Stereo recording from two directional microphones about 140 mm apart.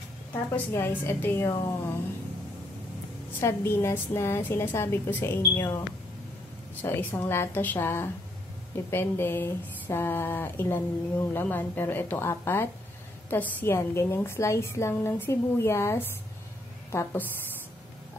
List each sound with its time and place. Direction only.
0.3 s speech: 15° left (ahead or behind)
3.3 s speech: 15° left (ahead or behind)